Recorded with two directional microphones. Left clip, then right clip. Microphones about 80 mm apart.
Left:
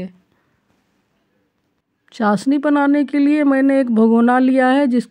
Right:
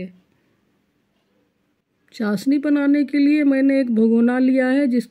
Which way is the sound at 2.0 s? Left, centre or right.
Left.